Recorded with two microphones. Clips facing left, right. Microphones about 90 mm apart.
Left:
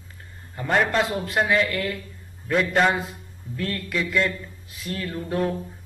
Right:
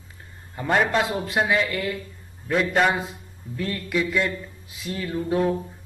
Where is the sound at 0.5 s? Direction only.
5° right (ahead or behind).